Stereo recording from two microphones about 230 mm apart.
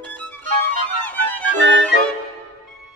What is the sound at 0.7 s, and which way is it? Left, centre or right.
Music, centre.